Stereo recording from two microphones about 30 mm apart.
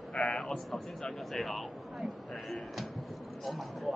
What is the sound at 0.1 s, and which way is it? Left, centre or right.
Sheep, left.